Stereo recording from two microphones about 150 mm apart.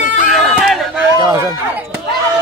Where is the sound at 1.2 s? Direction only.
25° right (ahead or behind).